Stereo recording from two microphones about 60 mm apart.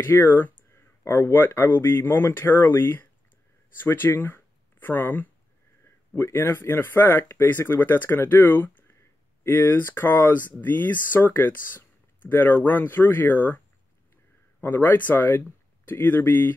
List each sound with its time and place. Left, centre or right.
0.0 s speech: left
14.6 s speech: left